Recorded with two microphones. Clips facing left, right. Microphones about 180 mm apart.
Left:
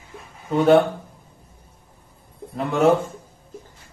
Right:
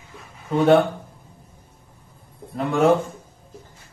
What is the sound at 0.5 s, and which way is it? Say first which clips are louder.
Speech: left 1 dB; centre (ahead or behind).